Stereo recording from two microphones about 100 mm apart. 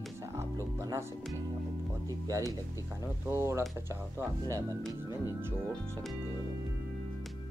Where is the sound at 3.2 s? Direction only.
25° right (ahead or behind).